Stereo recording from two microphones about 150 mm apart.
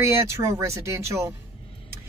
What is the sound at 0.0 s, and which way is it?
Speech, 20° right (ahead or behind).